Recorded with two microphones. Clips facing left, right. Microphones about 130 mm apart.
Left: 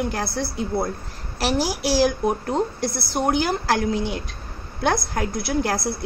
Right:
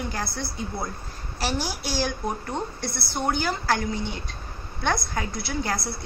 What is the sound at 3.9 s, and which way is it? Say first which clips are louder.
Speech: left 6 dB; 90° left.